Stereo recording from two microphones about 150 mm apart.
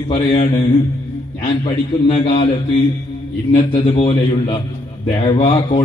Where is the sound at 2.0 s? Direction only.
40° left (ahead or behind).